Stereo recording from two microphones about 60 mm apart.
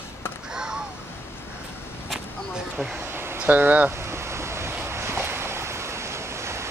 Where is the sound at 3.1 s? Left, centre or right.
Right.